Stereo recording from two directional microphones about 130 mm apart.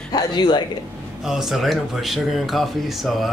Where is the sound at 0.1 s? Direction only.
35° left (ahead or behind).